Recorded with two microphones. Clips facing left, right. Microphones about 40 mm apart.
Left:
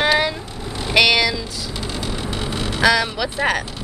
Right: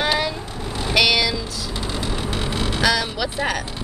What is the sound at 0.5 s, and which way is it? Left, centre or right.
Vehicle, right.